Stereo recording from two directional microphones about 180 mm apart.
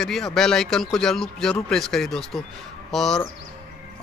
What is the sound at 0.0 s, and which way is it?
Speech, centre (ahead or behind).